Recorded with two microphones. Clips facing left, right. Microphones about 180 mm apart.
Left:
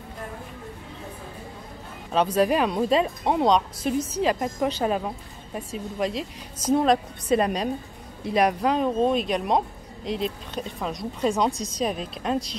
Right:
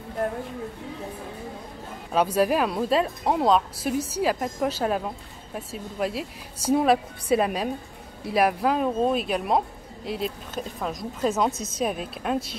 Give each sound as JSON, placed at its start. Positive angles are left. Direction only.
{"t": 2.1, "sound": "speech", "side_deg": -10}